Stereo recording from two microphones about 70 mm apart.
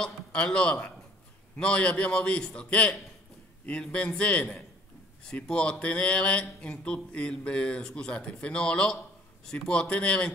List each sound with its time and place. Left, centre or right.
0.0 s speech: centre